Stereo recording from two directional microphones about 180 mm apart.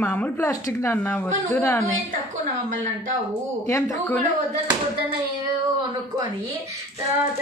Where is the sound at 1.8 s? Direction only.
40° right (ahead or behind).